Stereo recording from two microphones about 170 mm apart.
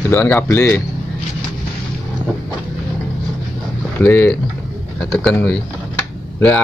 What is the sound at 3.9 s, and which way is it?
Speech, 10° left (ahead or behind).